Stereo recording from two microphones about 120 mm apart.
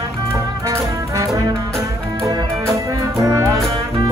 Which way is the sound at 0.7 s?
25° right (ahead or behind).